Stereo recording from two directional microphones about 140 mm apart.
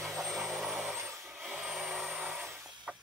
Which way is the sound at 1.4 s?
5° right (ahead or behind).